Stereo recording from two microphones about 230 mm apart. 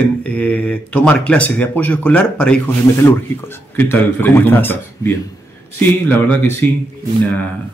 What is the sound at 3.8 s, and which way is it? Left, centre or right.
A man's voice, centre.